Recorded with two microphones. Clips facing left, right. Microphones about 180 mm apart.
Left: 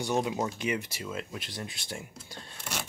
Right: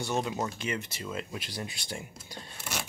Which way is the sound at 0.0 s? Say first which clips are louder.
Left 2 dB; 15° left (ahead or behind).